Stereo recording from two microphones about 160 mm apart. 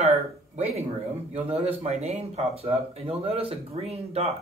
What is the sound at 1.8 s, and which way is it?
Speech, 45° right (ahead or behind).